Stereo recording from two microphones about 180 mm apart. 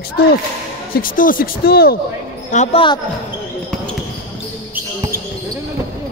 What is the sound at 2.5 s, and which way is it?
Speech, 40° left (ahead or behind).